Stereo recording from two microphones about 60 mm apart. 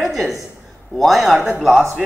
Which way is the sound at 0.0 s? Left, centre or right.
Centre.